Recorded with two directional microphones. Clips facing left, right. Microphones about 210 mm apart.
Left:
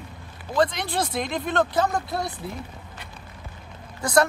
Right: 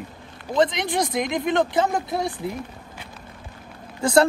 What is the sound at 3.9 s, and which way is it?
Speech, 25° right (ahead or behind).